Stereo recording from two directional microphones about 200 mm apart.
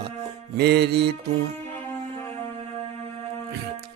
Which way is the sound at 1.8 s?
10° left (ahead or behind).